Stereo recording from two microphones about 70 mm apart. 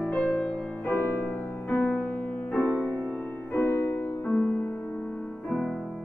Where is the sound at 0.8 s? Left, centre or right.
Left.